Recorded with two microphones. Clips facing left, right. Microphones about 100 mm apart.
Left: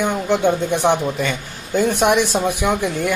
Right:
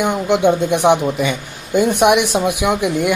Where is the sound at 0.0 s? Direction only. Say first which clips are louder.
Right 3 dB; 15° right (ahead or behind).